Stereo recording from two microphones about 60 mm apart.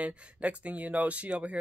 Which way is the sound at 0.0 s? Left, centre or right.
Right.